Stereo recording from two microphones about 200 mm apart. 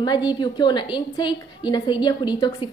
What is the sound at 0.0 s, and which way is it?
A woman's voice, 20° left (ahead or behind).